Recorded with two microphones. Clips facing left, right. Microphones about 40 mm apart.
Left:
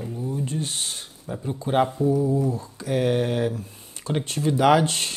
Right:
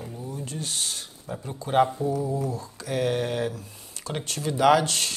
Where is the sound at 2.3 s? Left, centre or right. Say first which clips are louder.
Left 5 dB; left.